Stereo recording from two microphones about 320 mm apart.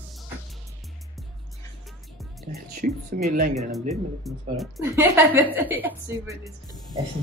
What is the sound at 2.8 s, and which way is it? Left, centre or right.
Speech, right.